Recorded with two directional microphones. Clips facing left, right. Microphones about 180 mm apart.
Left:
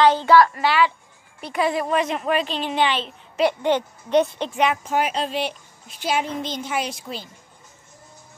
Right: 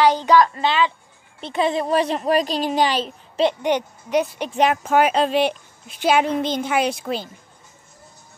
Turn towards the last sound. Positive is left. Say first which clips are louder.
# right 6 dB
turn(degrees=-60)  # may be behind; listen again after turning